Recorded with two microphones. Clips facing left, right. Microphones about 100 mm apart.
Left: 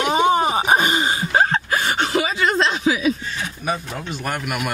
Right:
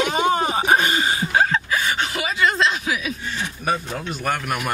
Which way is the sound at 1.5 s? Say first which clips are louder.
Left 1 dB; 45° left (ahead or behind).